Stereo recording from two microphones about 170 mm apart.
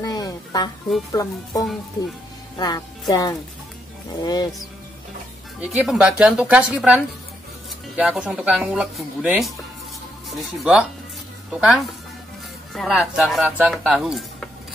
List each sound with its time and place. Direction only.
0.0 s a sound: 20° left (ahead or behind)
1.1 s speech: 20° left (ahead or behind)
5.6 s speech: 5° right (ahead or behind)
12.7 s speech: centre (ahead or behind)